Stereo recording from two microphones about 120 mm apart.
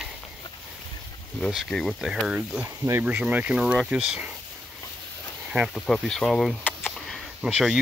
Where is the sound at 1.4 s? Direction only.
Centre (ahead or behind).